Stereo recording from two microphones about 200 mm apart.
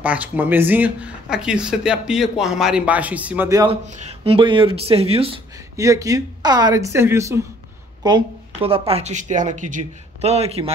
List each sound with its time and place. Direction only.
0.0 s speech: 5° right (ahead or behind)
3.8 s speech: 35° right (ahead or behind)
5.8 s speech: 15° right (ahead or behind)
8.0 s speech: 25° right (ahead or behind)